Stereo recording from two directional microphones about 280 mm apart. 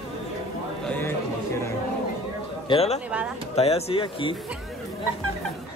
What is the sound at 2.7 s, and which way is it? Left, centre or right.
Speech, left.